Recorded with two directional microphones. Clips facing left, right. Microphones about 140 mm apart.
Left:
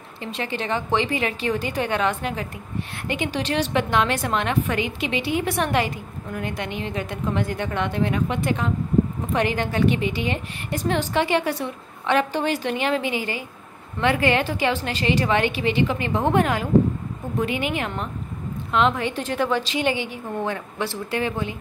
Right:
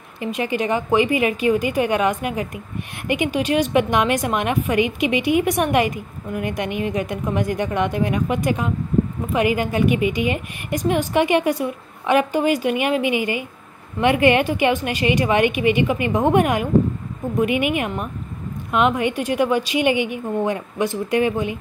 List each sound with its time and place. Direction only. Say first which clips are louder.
0.2 s a woman's voice: right 6 dB; 15° right (ahead or behind)